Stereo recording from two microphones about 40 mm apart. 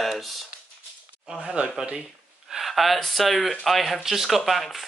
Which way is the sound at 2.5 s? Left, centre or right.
Centre.